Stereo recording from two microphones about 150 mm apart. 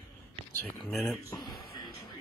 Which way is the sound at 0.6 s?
5° left (ahead or behind).